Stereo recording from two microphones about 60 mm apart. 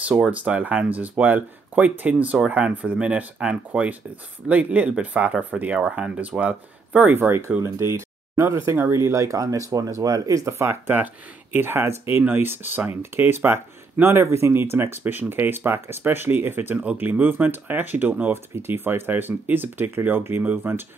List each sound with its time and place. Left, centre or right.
0.3 s speech: right
2.3 s speech: centre
5.8 s speech: centre
7.2 s speech: right
7.6 s speech: right
8.7 s speech: right
11.5 s speech: right
16.7 s speech: right
17.0 s speech: right